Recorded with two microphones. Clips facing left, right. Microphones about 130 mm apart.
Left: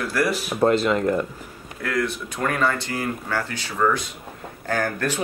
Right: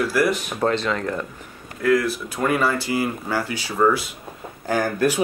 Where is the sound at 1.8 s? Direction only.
Centre (ahead or behind).